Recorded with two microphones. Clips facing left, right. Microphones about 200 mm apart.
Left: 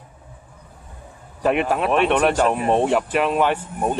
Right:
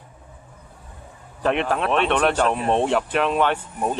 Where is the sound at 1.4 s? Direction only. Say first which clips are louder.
Left 2 dB; 5° left (ahead or behind).